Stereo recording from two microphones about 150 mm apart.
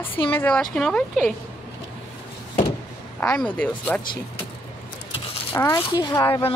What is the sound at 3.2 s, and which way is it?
Speech, 5° left (ahead or behind).